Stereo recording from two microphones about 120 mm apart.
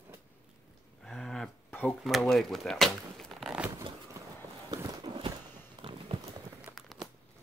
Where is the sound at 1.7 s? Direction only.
15° left (ahead or behind).